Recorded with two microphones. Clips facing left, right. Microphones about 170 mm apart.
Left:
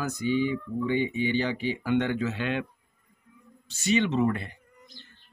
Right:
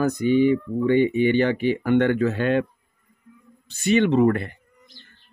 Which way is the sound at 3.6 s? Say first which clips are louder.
Right 6 dB; 55° right (ahead or behind).